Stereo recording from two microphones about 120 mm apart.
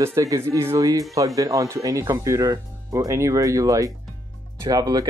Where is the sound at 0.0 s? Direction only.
25° right (ahead or behind).